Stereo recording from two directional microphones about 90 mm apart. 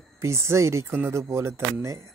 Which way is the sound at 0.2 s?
30° right (ahead or behind).